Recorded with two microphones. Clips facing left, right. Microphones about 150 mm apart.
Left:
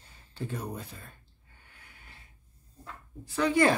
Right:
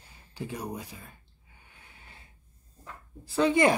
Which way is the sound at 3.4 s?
20° right (ahead or behind).